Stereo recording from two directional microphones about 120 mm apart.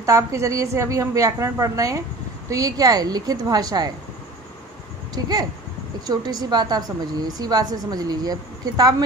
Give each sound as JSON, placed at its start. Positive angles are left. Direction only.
{"t": 0.0, "sound": "a woman's voice", "side_deg": -25}
{"t": 5.1, "sound": "a woman's voice", "side_deg": -35}